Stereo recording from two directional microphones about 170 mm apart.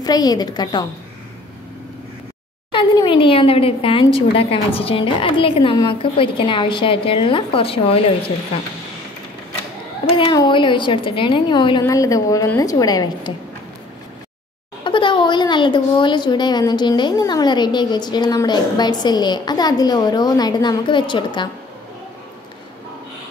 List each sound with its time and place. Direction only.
0.0 s a woman's voice: 25° left (ahead or behind)
2.7 s speech: 30° left (ahead or behind)
10.0 s a woman's voice: 30° left (ahead or behind)
14.8 s a woman's voice: 30° left (ahead or behind)